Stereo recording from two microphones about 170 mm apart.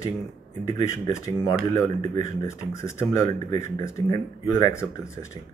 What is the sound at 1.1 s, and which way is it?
Speech, 20° left (ahead or behind).